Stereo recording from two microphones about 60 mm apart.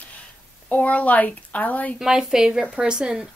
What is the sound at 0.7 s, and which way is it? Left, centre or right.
Speech, left.